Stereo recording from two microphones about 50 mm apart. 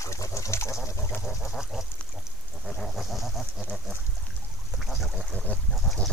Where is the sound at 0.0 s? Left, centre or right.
Left.